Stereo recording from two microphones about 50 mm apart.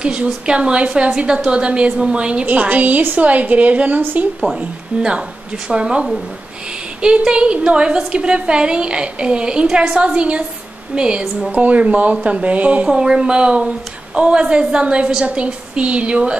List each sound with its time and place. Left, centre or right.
0.0 s a woman's voice: centre
5.7 s a woman's voice: centre
7.2 s a woman's voice: right
12.8 s a woman's voice: centre